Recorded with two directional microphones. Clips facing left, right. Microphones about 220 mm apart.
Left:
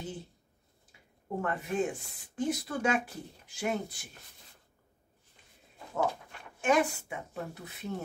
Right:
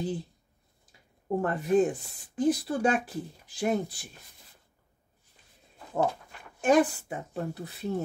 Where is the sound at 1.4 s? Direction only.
35° right (ahead or behind).